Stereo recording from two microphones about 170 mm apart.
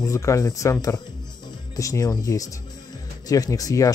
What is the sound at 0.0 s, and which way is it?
Speech, 15° left (ahead or behind).